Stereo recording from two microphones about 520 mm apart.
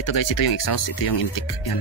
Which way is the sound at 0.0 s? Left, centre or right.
Left.